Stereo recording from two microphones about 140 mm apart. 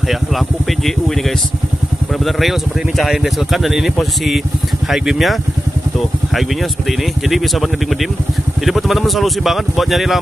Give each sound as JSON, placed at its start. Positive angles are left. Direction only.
{"t": 3.0, "sound": "speech", "side_deg": 0}
{"t": 6.9, "sound": "speech", "side_deg": 0}